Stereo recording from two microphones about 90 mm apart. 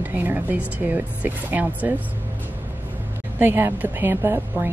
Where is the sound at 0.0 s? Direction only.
20° right (ahead or behind).